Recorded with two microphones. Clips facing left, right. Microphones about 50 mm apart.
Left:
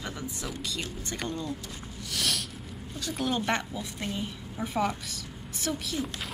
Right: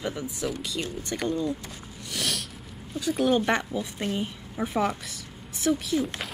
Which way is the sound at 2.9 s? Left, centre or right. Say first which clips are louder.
Right 7 dB; centre.